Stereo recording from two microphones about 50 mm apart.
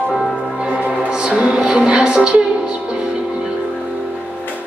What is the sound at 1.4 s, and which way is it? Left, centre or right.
Music, centre.